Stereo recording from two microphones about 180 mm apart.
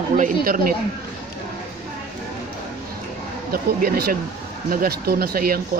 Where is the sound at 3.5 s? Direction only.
55° right (ahead or behind).